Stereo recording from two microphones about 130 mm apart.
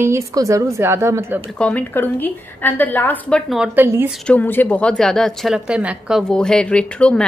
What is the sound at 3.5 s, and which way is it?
Speech, 10° right (ahead or behind).